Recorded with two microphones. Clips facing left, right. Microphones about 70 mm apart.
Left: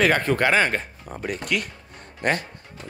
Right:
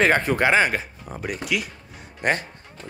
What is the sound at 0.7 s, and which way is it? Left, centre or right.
Speech, centre.